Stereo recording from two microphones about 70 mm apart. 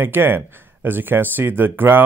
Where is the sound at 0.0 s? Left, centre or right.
Right.